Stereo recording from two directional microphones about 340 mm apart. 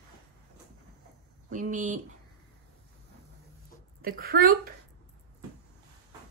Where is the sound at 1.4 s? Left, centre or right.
Right.